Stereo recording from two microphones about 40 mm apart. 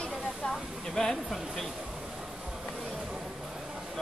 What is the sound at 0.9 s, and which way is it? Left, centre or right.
Speech, centre.